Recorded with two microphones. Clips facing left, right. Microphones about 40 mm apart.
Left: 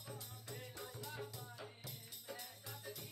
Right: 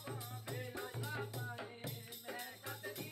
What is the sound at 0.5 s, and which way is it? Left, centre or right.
Music, right.